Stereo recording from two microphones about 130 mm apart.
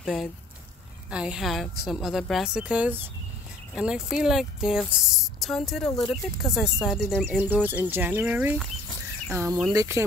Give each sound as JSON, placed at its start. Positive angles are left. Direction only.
{"t": 0.0, "sound": "a woman's voice", "side_deg": 0}
{"t": 7.2, "sound": "speech", "side_deg": -15}